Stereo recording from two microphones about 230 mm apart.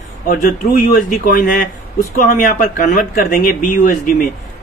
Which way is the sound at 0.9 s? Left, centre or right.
Left.